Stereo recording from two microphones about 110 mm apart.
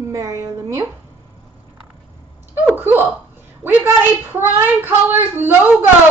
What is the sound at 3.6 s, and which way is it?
A woman's voice, 20° right (ahead or behind).